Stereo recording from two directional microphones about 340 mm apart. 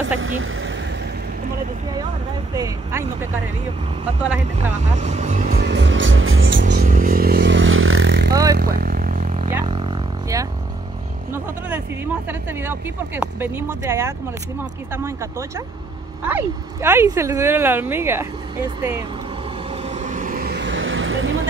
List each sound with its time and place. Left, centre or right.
0.2 s vehicle: right
2.5 s speech: centre
4.9 s speech: centre; by 6.6 s right
6.6 s vehicle: right
8.3 s vehicle: centre
8.5 s a sound: right
10.3 s vehicle: centre
11.3 s speech: centre
19.8 s vehicle: centre; by 21.5 s right